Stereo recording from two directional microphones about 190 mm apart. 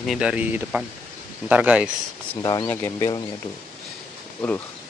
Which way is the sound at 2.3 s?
20° left (ahead or behind).